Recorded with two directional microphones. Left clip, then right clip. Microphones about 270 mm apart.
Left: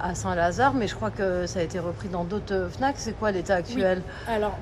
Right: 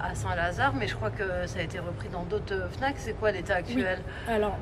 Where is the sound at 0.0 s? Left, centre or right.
Centre.